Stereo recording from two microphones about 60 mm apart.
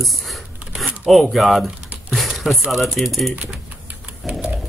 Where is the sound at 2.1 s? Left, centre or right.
Centre.